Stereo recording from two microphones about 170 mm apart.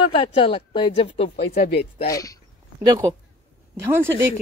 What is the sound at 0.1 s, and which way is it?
Speech, 30° left (ahead or behind).